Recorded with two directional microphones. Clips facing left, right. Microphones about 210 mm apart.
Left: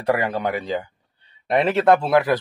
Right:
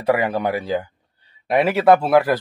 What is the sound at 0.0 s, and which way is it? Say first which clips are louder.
A man's voice: right 2 dB; 10° right (ahead or behind).